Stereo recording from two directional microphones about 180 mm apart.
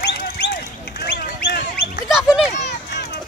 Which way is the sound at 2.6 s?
70° left (ahead or behind).